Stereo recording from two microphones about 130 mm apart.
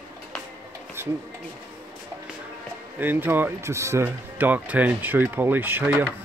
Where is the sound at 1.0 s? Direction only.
20° right (ahead or behind).